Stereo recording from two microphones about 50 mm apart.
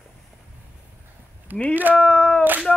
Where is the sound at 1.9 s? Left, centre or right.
Left.